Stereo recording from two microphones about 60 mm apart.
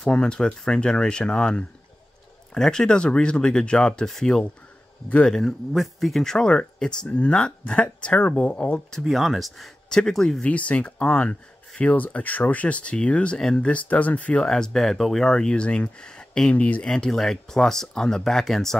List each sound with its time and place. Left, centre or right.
0.0 s speech: centre
5.3 s speech: centre; by 8.8 s left
9.0 s speech: centre
9.8 s speech: centre
10.4 s speech: left
16.8 s speech: centre